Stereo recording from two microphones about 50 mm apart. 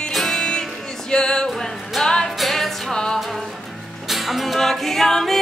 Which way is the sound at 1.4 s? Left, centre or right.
Centre.